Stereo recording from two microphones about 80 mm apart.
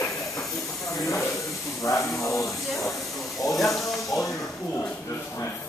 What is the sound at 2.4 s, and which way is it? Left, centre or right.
Snake, centre.